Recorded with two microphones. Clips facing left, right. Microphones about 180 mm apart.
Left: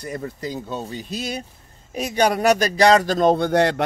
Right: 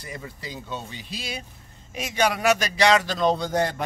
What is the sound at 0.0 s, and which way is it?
Speech, 45° left (ahead or behind).